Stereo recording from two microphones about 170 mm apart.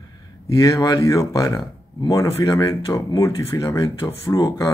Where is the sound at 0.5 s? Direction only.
25° left (ahead or behind).